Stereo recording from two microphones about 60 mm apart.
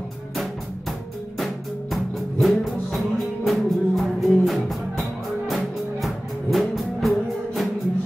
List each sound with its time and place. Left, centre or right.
1.4 s music: centre